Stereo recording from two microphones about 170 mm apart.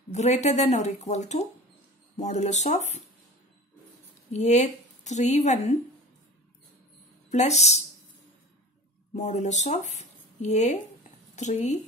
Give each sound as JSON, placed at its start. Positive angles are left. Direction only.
{"t": 0.1, "sound": "a woman's voice", "side_deg": 40}
{"t": 4.3, "sound": "a woman's voice", "side_deg": 45}
{"t": 7.2, "sound": "a woman's voice", "side_deg": 40}
{"t": 9.1, "sound": "speech", "side_deg": 45}